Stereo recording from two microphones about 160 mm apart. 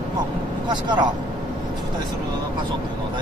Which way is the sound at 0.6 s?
25° right (ahead or behind).